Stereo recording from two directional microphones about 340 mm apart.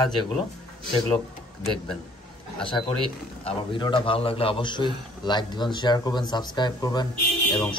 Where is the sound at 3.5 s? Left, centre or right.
Centre.